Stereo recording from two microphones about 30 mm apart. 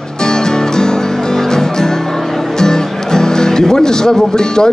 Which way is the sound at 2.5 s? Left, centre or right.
Centre.